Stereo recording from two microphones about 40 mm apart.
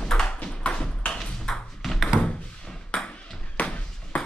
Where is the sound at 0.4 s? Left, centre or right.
Left.